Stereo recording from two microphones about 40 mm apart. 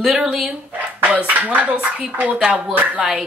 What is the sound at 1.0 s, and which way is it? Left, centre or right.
Speech, right.